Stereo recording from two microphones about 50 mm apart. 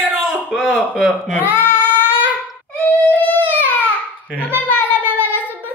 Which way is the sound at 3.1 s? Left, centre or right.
Left.